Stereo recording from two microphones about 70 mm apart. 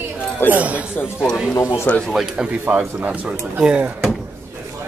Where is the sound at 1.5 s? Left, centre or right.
Left.